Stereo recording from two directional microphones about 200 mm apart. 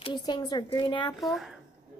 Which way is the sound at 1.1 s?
Centre (ahead or behind).